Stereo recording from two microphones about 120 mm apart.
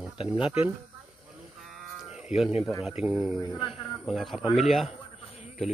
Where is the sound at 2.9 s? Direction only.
10° right (ahead or behind).